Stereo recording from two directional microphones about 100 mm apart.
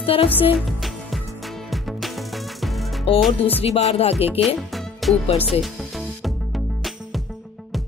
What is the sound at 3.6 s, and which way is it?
Speech, 90° left.